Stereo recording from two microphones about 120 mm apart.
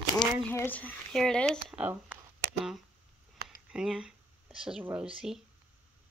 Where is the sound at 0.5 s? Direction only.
15° left (ahead or behind).